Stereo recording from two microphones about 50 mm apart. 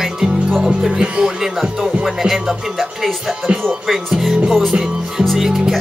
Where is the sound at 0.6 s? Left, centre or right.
Centre.